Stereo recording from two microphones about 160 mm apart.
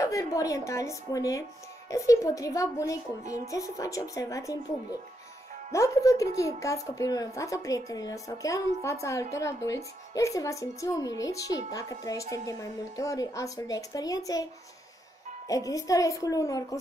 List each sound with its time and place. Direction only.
0.0 s a woman's voice: 20° left (ahead or behind)
5.7 s a woman's voice: 20° left (ahead or behind)
15.4 s a woman's voice: 20° left (ahead or behind)